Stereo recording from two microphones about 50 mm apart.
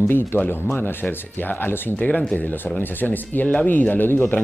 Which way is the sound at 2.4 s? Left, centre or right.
Left.